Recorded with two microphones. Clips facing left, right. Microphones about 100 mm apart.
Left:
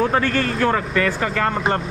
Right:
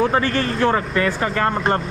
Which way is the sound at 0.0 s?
5° right (ahead or behind).